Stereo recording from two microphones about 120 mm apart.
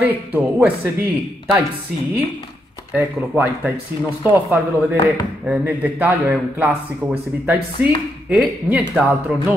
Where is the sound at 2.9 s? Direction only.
15° right (ahead or behind).